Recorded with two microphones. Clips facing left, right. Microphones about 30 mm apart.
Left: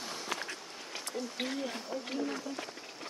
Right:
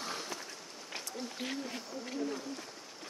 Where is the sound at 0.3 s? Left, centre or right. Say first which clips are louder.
Left 6 dB; left.